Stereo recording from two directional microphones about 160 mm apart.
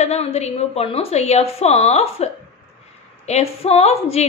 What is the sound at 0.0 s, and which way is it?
A woman's voice, 40° left (ahead or behind).